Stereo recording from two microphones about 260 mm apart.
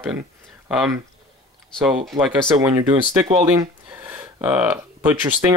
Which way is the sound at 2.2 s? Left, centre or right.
Centre.